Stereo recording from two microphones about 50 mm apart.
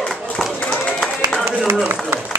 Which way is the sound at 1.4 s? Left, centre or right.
Right.